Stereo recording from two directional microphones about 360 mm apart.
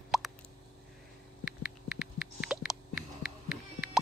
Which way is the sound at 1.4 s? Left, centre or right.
Centre.